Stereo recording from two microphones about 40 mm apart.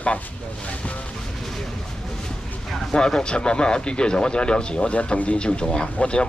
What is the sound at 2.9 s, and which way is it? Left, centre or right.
Speech, left.